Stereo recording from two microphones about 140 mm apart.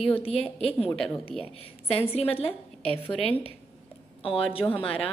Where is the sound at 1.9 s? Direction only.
45° left (ahead or behind).